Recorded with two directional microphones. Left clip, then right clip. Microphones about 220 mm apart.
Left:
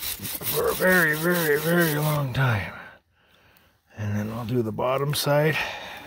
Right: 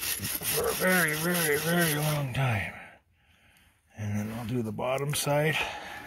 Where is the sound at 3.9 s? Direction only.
50° left (ahead or behind).